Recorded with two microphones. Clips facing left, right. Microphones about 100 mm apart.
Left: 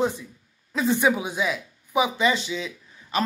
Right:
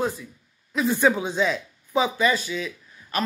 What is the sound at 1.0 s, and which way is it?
Speech, 10° left (ahead or behind).